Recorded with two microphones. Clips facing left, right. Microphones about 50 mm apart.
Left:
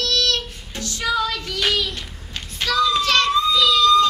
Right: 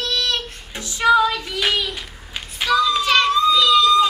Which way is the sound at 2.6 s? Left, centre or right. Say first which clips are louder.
Right 1 dB; centre.